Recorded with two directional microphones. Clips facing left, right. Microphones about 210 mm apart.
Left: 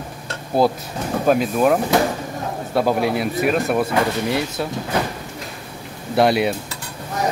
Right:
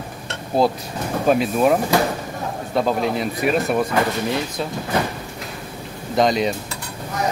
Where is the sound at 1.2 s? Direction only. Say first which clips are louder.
Even; centre (ahead or behind).